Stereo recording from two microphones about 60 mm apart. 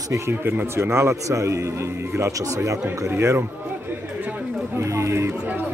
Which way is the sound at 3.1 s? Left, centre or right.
Right.